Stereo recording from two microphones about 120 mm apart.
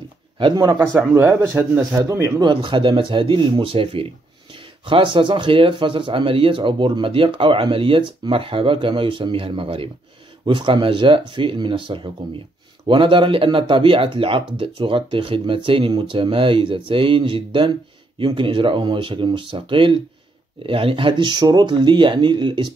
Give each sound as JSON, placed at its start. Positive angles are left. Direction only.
{"t": 0.4, "sound": "speech", "side_deg": -40}
{"t": 1.1, "sound": "speech", "side_deg": -20}
{"t": 2.4, "sound": "speech", "side_deg": -45}